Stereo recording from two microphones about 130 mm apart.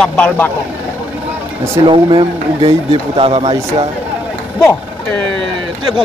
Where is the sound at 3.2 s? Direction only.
50° right (ahead or behind).